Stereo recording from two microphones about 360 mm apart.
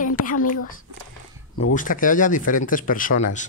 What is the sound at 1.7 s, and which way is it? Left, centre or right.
A woman's voice, left.